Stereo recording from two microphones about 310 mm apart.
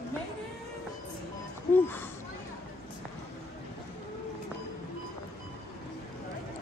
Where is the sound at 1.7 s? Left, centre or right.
Centre.